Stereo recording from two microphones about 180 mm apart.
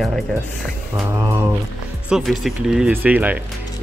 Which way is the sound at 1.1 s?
15° right (ahead or behind).